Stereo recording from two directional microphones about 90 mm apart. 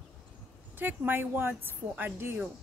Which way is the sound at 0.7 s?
20° right (ahead or behind).